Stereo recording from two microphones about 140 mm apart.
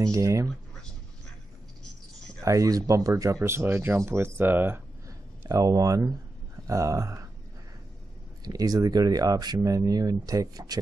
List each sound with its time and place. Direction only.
0.0 s speech: 20° right (ahead or behind)
2.4 s speech: 25° right (ahead or behind)
5.4 s speech: 25° right (ahead or behind)
8.5 s speech: 25° right (ahead or behind)